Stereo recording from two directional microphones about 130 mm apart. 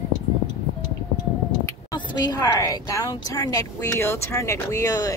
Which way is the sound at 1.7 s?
35° left (ahead or behind).